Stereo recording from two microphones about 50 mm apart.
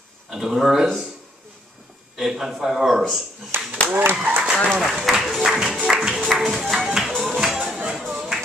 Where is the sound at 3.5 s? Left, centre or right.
Right.